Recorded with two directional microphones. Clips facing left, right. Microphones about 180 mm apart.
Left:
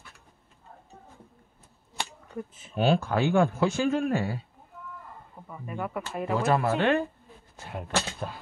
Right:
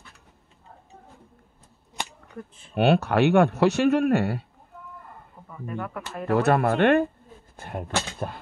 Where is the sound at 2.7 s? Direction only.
70° right (ahead or behind).